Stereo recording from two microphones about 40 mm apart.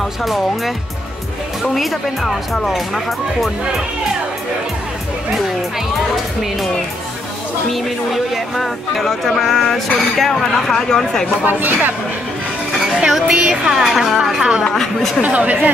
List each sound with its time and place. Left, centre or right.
0.2 s speech: centre
7.7 s speech: centre
11.4 s speech: right
12.7 s a woman's voice: centre
13.9 s speech: centre
14.6 s speech: centre
15.2 s speech: right